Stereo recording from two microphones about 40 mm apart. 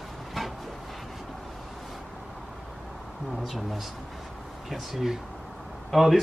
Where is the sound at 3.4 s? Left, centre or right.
Centre.